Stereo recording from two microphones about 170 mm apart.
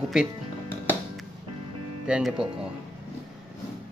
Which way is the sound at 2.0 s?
5° right (ahead or behind).